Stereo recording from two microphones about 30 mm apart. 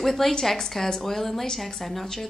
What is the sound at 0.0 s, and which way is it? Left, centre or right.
A woman's voice, centre.